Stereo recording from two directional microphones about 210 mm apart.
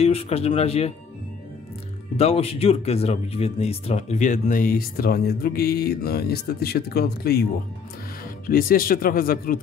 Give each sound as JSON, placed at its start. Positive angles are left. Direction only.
{"t": 0.0, "sound": "speech", "side_deg": 30}
{"t": 2.1, "sound": "speech", "side_deg": 30}